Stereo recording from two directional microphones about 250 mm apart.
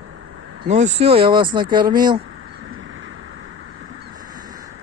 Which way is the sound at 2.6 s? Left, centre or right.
Right.